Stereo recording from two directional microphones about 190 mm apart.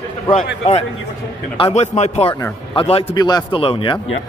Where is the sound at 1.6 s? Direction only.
35° left (ahead or behind).